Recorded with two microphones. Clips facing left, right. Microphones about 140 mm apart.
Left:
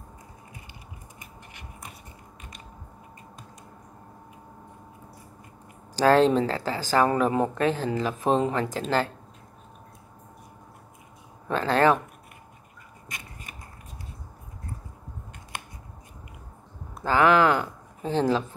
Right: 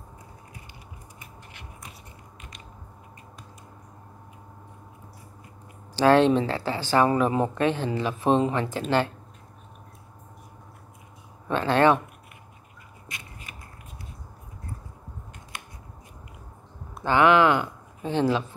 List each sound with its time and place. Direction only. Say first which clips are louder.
5.9 s speech: right 1 dB; 40° left (ahead or behind)
11.4 s speech: right 1 dB; 40° left (ahead or behind)
16.9 s speech: right 1 dB; 40° left (ahead or behind)